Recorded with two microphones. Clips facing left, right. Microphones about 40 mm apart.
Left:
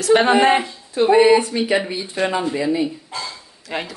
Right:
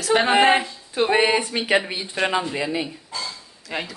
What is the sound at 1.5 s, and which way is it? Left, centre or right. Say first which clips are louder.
Speech: left 5 dB; right.